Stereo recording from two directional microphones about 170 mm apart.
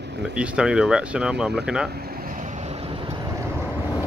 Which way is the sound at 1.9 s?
60° right (ahead or behind).